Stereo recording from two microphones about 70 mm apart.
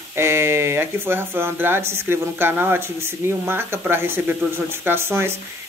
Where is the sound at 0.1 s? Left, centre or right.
Right.